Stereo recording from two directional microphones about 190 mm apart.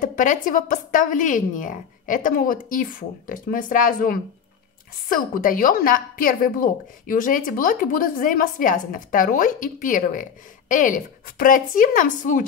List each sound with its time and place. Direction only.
0.0 s a woman's voice: 45° left (ahead or behind)